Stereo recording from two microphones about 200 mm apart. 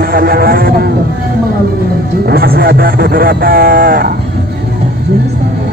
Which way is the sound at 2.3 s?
50° right (ahead or behind).